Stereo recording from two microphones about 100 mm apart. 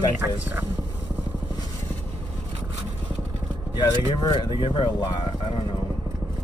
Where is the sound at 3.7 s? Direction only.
45° left (ahead or behind).